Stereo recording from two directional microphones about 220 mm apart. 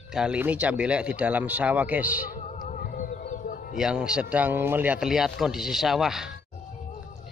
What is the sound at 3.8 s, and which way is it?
Speech, 5° right (ahead or behind).